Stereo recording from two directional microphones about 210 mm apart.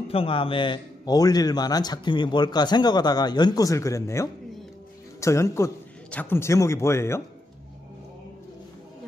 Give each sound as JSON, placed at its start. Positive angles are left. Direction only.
{"t": 0.1, "sound": "a man's voice", "side_deg": 25}